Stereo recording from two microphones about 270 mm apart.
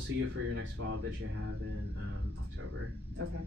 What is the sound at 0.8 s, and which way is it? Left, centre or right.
Speech, right.